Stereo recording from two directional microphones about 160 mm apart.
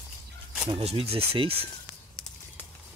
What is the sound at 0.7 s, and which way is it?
Speech, 35° right (ahead or behind).